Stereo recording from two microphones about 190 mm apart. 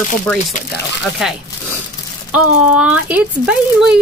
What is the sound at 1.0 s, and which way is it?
Speech, centre (ahead or behind).